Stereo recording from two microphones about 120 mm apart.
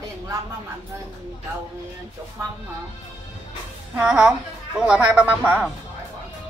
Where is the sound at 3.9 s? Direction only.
5° right (ahead or behind).